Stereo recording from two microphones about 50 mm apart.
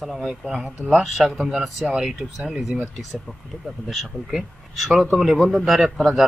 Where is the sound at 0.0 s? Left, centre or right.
Centre.